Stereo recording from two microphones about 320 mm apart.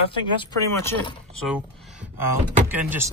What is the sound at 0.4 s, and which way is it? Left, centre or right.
Speech, centre.